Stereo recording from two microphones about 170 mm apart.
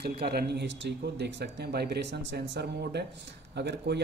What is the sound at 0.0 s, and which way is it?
A man's voice, 70° right (ahead or behind).